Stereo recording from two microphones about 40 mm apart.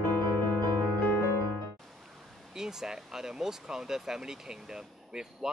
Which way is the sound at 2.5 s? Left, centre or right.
Centre.